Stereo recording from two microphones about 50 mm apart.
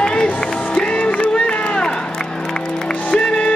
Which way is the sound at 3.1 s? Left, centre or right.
Centre.